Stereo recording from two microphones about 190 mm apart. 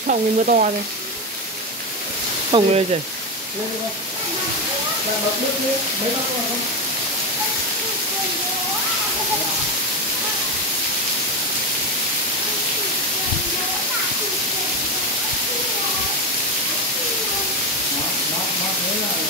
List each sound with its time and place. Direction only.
0.0 s speech: 45° right (ahead or behind)
2.5 s speech: 30° right (ahead or behind)